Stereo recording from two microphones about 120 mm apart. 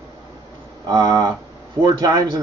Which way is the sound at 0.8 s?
30° right (ahead or behind).